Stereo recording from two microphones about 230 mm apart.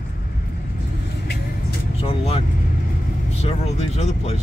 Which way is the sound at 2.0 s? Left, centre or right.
Left.